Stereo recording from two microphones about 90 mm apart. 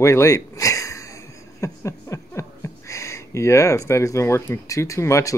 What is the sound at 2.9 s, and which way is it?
Speech, 35° left (ahead or behind).